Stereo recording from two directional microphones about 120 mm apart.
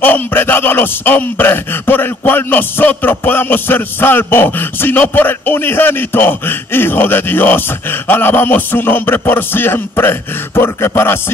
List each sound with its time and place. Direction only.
0.0 s speech: 15° left (ahead or behind)